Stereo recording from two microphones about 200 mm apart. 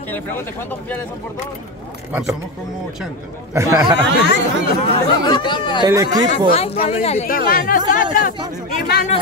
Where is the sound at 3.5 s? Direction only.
15° right (ahead or behind).